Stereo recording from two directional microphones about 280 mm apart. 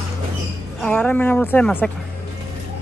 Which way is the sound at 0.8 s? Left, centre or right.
Centre.